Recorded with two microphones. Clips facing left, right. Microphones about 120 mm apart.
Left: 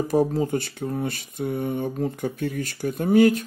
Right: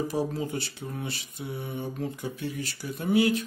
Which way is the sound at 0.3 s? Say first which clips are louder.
Left 7 dB; 45° left (ahead or behind).